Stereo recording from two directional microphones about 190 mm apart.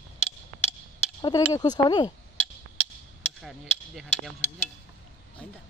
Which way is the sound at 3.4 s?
Centre (ahead or behind).